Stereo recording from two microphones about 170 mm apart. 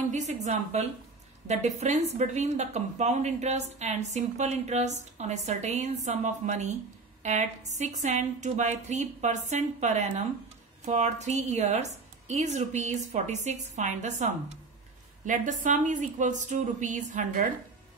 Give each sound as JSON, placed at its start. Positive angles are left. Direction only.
{"t": 0.1, "sound": "a woman's voice", "side_deg": -40}